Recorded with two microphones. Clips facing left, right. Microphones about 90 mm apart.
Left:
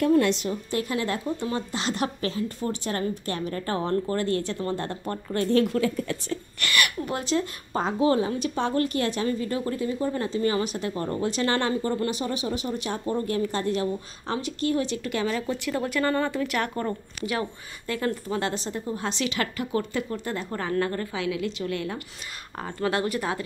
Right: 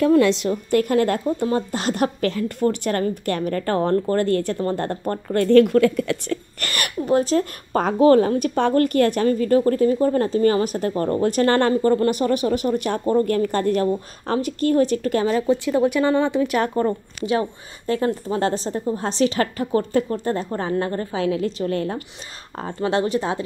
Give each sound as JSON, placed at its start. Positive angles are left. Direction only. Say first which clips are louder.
{"t": 0.1, "sound": "a woman's voice", "louder": "right 5 dB", "side_deg": -90}
{"t": 0.5, "sound": "a woman's voice", "louder": "right 9 dB", "side_deg": -55}
{"t": 6.6, "sound": "a woman's voice", "louder": "even", "side_deg": -40}
{"t": 7.7, "sound": "a woman's voice", "louder": "right 8 dB", "side_deg": -60}
{"t": 15.4, "sound": "speech", "louder": "right 9 dB", "side_deg": -25}
{"t": 22.6, "sound": "speech", "louder": "right 5 dB", "side_deg": -25}